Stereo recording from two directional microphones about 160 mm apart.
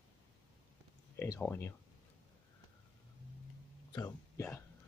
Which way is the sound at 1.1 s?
20° left (ahead or behind).